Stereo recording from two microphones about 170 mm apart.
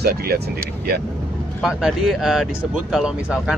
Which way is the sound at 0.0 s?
65° right (ahead or behind).